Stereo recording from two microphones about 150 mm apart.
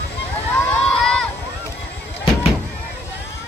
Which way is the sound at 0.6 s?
5° left (ahead or behind).